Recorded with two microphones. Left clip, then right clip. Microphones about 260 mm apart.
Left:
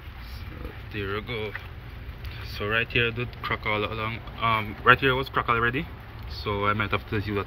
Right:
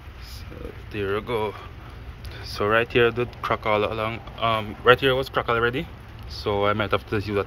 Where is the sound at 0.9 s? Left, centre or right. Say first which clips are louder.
Right 6 dB; centre.